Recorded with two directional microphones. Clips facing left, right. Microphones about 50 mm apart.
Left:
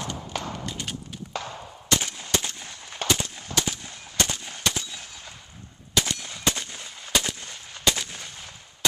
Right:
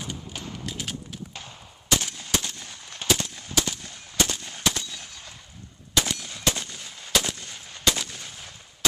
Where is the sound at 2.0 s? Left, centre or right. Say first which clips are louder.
Left 1 dB; centre.